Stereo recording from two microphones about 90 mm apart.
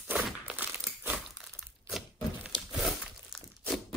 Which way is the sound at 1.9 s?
5° right (ahead or behind).